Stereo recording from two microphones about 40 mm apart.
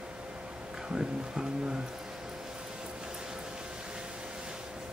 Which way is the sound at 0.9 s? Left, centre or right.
Centre.